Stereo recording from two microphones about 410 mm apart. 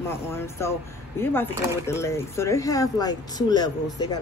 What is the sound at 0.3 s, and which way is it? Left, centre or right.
Speech, centre.